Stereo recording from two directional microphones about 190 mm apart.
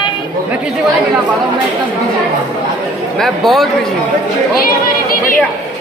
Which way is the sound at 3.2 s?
Centre (ahead or behind).